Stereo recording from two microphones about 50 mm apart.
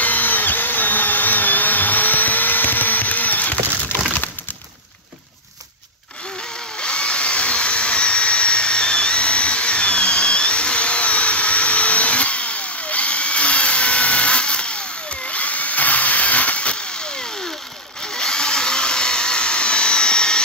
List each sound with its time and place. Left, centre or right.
0.0 s drill: left
6.8 s drill: centre
18.1 s a sound: centre